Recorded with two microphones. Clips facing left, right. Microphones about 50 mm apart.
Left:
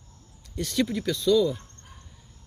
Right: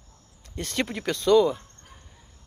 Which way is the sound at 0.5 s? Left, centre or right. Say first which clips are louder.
Left 3 dB; right.